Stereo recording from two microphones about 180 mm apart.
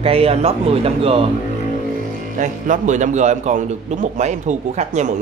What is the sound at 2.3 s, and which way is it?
A man's voice, 45° right (ahead or behind).